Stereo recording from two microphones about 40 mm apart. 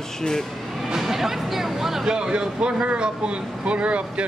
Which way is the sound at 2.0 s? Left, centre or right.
Right.